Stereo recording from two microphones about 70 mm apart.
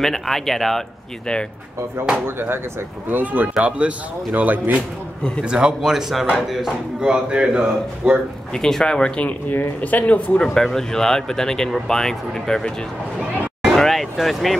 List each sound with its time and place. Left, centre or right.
0.0 s speech: centre
2.2 s speech: right; by 8.2 s centre
8.5 s speech: centre
9.5 s speech: left
10.4 s speech: centre
13.7 s vehicle: centre